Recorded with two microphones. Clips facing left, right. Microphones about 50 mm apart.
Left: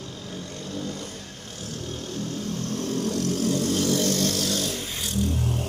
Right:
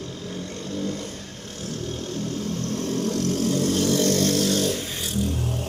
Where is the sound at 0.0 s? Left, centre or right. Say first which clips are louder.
Right 3 dB; centre.